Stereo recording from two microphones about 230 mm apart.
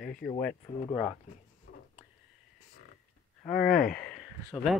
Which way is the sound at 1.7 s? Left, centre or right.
Left.